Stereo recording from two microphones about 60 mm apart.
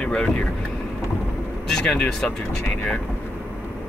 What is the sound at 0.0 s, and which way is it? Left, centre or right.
Speech, centre.